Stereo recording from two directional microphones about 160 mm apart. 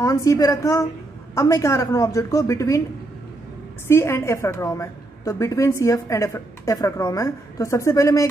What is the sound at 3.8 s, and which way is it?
A woman's voice, 15° left (ahead or behind).